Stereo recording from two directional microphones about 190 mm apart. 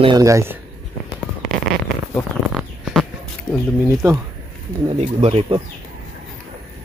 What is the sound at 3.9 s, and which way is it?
Speech, 15° right (ahead or behind).